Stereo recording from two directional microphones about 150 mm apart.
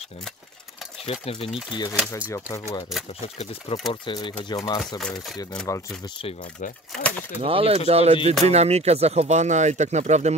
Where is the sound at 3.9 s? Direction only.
30° left (ahead or behind).